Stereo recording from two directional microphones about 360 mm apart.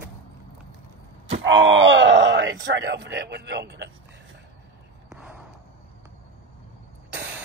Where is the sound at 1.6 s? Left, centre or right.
Right.